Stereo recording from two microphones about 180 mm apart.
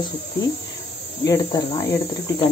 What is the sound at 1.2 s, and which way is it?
Speech, 20° left (ahead or behind).